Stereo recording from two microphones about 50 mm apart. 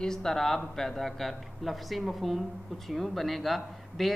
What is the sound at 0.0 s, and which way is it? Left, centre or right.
Speech, centre.